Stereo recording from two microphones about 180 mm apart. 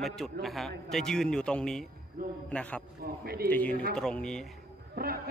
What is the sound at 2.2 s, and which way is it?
Speech, 55° right (ahead or behind).